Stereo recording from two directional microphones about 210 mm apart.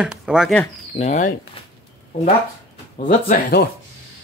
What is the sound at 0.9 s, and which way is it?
Speech, 35° left (ahead or behind).